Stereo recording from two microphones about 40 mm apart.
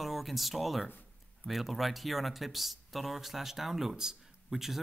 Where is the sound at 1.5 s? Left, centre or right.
Centre.